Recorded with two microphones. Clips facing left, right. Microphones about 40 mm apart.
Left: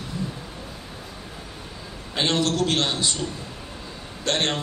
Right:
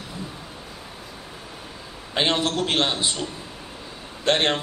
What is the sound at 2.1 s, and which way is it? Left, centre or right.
A man's voice, right.